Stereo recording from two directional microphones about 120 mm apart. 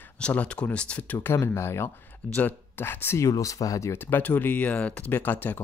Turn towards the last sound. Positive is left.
turn(degrees=15)  # may be behind; listen again after turning